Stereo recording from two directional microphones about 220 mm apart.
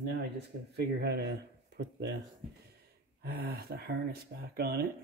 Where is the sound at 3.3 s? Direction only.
45° right (ahead or behind).